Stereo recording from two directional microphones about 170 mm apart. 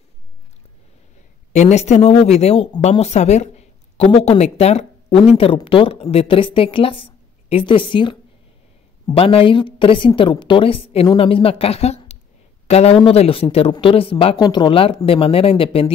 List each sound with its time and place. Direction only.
1.5 s a woman's voice: 40° left (ahead or behind)